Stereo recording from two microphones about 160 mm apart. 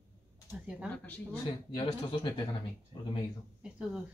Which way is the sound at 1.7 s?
30° left (ahead or behind).